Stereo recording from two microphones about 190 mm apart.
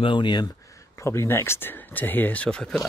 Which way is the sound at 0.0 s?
25° left (ahead or behind).